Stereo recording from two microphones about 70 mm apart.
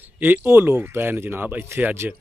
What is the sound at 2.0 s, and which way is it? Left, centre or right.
Speech, centre.